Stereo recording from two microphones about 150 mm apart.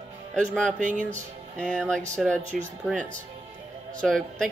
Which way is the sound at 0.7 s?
55° right (ahead or behind).